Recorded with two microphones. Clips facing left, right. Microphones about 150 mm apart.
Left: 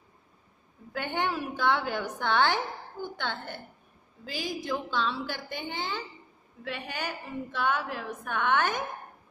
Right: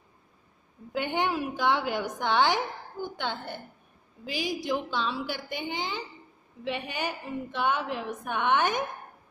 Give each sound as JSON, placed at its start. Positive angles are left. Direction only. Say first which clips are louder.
{"t": 0.9, "sound": "a woman's voice", "louder": "right 3 dB", "side_deg": -15}